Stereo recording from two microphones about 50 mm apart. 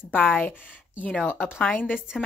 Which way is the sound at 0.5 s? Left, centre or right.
Left.